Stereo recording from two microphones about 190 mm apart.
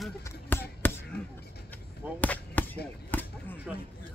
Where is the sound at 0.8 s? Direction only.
10° left (ahead or behind).